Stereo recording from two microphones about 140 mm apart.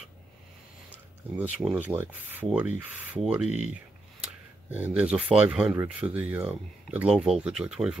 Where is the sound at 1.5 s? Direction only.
10° right (ahead or behind).